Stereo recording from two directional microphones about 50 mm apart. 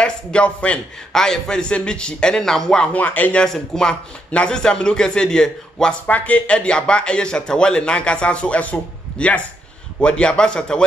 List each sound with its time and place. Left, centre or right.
0.0 s a man's voice: left
1.1 s a man's voice: centre
2.8 s speech: left
3.4 s a man's voice: centre
4.3 s a man's voice: left
6.0 s speech: left